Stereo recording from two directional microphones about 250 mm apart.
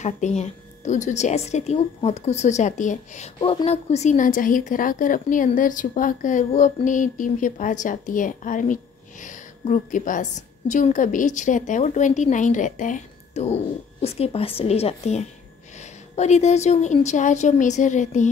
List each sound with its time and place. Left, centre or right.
0.0 s a woman's voice: left